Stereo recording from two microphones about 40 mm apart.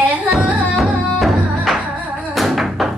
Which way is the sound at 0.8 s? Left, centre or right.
Centre.